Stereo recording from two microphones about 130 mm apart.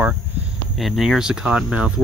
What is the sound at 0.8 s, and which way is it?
Speech, centre (ahead or behind).